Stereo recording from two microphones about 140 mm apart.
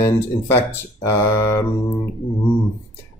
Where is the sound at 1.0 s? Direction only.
20° left (ahead or behind).